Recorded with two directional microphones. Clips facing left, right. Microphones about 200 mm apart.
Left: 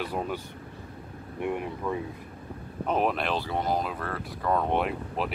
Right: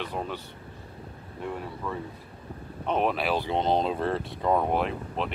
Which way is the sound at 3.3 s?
20° right (ahead or behind).